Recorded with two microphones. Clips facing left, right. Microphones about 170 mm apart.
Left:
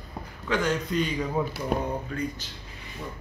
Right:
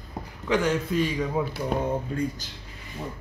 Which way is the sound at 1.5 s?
25° right (ahead or behind).